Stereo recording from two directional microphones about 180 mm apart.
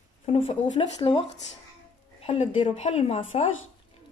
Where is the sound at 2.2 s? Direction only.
35° left (ahead or behind).